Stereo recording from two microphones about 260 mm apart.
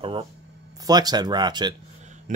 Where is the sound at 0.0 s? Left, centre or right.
Right.